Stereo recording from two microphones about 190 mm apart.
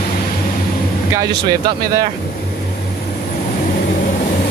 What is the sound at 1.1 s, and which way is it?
Speech, 20° right (ahead or behind).